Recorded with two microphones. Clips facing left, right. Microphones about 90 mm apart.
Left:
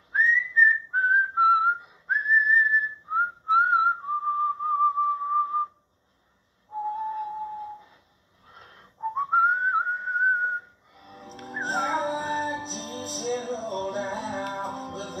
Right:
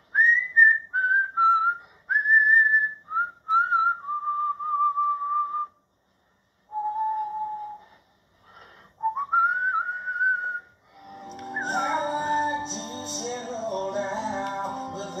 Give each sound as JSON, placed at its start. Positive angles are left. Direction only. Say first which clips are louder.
{"t": 0.1, "sound": "whistling", "louder": "right 2 dB", "side_deg": 0}
{"t": 6.7, "sound": "whistle", "louder": "right 3 dB", "side_deg": 0}
{"t": 8.5, "sound": "whistling", "louder": "even", "side_deg": 0}